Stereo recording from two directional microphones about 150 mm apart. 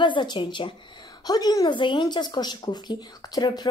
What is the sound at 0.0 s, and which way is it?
Speech, 30° left (ahead or behind).